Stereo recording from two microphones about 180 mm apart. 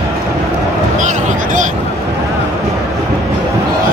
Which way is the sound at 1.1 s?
45° right (ahead or behind).